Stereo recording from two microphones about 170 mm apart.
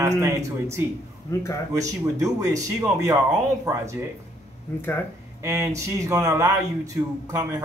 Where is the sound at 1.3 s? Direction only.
15° left (ahead or behind).